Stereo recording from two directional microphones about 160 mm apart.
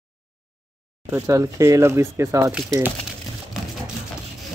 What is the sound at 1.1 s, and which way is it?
Speech, 20° right (ahead or behind).